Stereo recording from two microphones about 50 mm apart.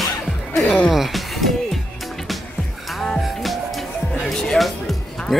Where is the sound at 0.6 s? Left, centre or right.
Left.